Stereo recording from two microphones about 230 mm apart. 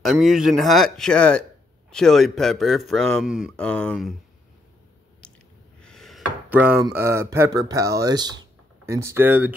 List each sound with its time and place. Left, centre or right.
0.0 s a man's voice: centre
5.2 s a sound: centre
5.8 s speech: centre